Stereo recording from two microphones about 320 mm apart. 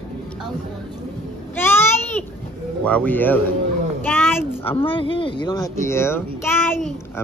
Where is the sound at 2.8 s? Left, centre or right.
Centre.